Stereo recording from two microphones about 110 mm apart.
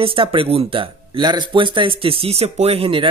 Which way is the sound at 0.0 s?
55° right (ahead or behind).